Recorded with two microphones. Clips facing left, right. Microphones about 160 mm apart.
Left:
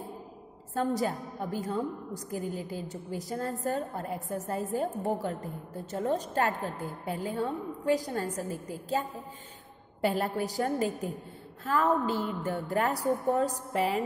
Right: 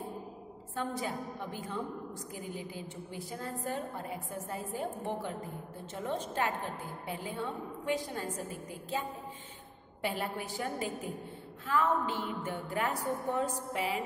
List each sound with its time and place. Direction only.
0.7 s a woman's voice: 40° left (ahead or behind)
10.0 s a woman's voice: 40° left (ahead or behind)